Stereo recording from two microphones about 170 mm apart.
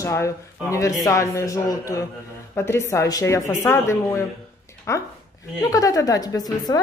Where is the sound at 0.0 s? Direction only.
15° left (ahead or behind).